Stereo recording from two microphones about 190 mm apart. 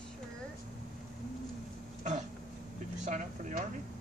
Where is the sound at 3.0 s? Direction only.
40° right (ahead or behind).